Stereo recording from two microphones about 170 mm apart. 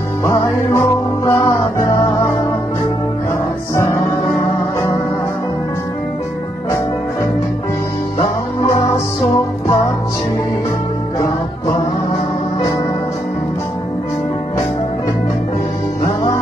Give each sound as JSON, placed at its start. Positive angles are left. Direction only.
{"t": 0.2, "sound": "music", "side_deg": 15}
{"t": 3.7, "sound": "music", "side_deg": 15}
{"t": 8.2, "sound": "music", "side_deg": 20}